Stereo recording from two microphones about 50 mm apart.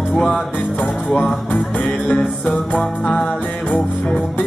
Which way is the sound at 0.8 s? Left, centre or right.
Left.